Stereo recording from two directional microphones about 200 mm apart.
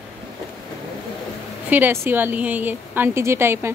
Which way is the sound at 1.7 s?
10° right (ahead or behind).